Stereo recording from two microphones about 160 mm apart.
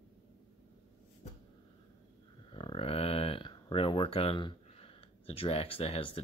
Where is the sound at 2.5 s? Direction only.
35° left (ahead or behind).